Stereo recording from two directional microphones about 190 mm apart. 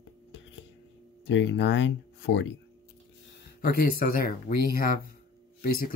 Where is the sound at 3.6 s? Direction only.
50° left (ahead or behind).